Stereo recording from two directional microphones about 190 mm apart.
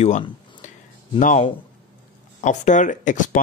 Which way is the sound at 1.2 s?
40° left (ahead or behind).